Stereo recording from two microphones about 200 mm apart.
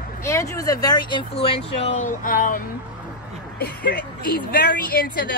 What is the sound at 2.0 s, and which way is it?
A woman's voice, 45° left (ahead or behind).